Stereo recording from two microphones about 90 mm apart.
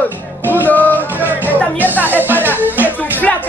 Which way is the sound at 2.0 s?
20° right (ahead or behind).